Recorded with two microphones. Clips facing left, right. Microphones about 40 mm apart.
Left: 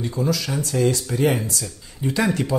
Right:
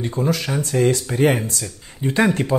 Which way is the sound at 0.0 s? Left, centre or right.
Right.